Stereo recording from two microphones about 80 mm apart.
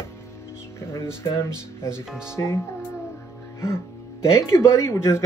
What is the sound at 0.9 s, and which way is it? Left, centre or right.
Speech, left.